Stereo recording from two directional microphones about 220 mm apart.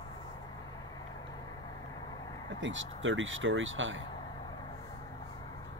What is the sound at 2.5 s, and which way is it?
Speech, 55° right (ahead or behind).